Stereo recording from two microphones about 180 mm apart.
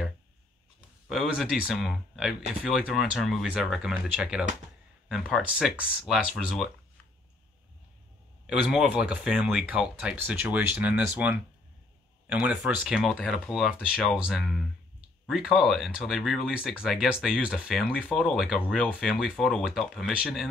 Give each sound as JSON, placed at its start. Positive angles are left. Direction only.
{"t": 1.0, "sound": "speech", "side_deg": 0}
{"t": 8.5, "sound": "speech", "side_deg": -5}